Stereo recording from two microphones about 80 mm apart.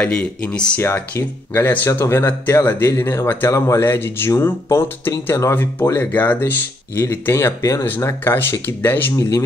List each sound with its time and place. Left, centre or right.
0.0 s speech: centre; by 7.8 s left
8.0 s speech: left